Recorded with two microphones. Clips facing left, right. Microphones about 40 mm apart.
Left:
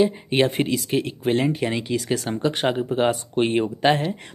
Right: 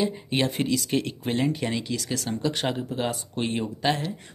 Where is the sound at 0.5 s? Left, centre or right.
Left.